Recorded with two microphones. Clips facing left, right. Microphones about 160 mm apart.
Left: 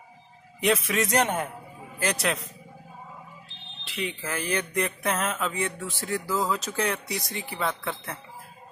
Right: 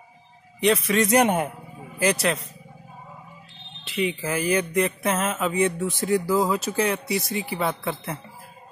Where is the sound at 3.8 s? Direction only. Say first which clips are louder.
Right 7 dB; centre (ahead or behind).